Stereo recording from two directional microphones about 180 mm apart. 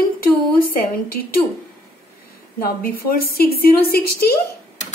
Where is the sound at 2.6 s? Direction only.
55° left (ahead or behind).